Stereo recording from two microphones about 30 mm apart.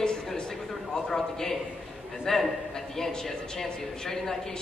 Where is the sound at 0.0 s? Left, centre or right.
Left.